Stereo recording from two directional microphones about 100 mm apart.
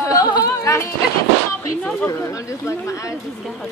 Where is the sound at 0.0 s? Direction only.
35° left (ahead or behind).